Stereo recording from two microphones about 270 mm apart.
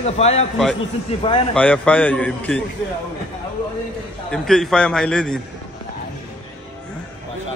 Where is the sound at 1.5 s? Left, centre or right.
Centre.